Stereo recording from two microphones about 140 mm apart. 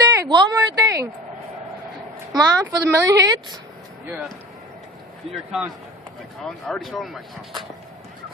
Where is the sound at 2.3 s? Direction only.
25° right (ahead or behind).